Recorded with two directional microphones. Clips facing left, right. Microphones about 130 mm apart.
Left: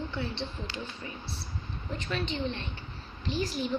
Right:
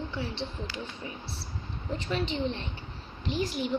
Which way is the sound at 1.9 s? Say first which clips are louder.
Right 3 dB; 25° right (ahead or behind).